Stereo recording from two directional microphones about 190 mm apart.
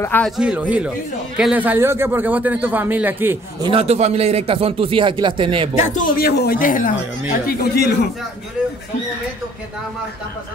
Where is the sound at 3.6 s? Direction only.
30° right (ahead or behind).